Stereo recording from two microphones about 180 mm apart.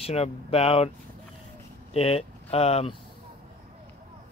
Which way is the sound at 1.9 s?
35° left (ahead or behind).